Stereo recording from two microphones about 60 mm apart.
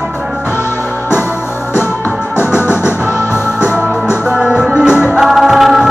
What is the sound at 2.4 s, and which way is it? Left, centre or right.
Music, left.